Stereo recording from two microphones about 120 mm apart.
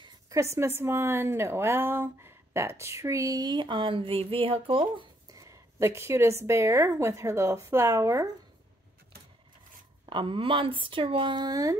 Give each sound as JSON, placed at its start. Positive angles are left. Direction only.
{"t": 0.3, "sound": "a woman's voice", "side_deg": -25}
{"t": 5.3, "sound": "a woman's voice", "side_deg": -25}
{"t": 10.0, "sound": "speech", "side_deg": -45}